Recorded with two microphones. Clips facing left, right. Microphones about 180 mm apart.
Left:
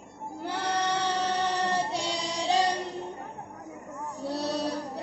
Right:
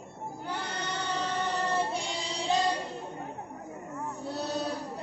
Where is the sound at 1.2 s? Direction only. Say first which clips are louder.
Left 3 dB; 75° left (ahead or behind).